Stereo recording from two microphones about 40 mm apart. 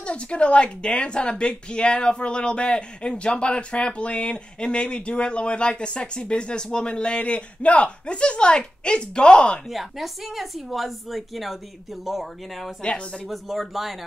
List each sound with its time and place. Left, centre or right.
0.0 s a woman's voice: left
9.7 s a woman's voice: centre
12.8 s a woman's voice: left
13.3 s a woman's voice: centre